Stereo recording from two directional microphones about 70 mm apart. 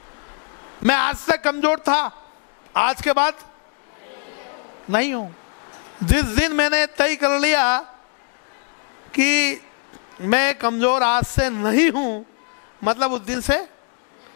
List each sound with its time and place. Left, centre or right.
0.8 s a man's voice: centre
4.4 s a sound: left
6.0 s a man's voice: centre
9.1 s a man's voice: centre